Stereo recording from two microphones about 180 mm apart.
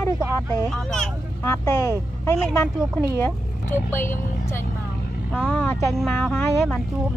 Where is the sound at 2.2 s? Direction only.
15° left (ahead or behind).